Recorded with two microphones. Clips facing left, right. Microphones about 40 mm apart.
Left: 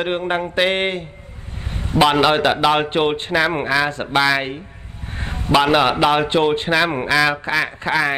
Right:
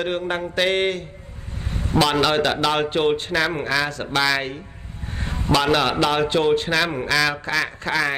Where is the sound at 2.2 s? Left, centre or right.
Centre.